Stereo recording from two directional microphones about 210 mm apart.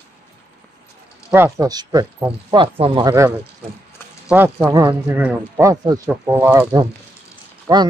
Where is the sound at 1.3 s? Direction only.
15° right (ahead or behind).